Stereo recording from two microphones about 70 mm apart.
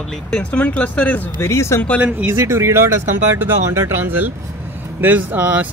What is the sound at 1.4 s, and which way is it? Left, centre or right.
Speech, left.